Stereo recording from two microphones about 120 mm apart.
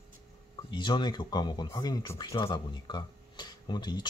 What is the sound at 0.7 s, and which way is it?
Speech, 40° left (ahead or behind).